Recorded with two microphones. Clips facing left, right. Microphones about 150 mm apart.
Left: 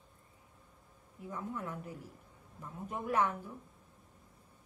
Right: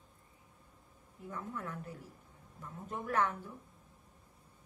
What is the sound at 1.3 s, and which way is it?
A woman's voice, 10° left (ahead or behind).